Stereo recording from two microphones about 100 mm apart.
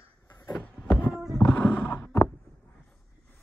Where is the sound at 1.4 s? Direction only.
10° left (ahead or behind).